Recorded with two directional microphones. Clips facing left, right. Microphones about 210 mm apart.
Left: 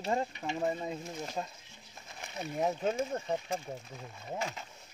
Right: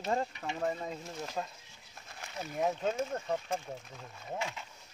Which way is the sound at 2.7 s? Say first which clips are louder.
Left 1 dB; 15° left (ahead or behind).